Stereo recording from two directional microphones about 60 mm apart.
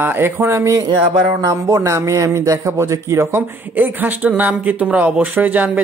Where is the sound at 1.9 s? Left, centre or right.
Right.